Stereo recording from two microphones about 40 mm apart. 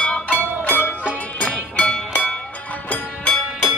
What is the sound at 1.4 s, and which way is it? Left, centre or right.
Music, left.